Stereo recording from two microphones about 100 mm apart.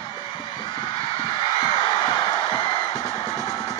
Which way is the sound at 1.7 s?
50° left (ahead or behind).